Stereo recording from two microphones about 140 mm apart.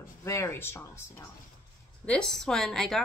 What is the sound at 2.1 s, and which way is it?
Speech, 5° left (ahead or behind).